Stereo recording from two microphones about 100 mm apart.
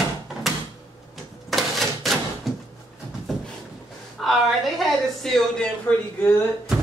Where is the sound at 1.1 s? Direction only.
Centre (ahead or behind).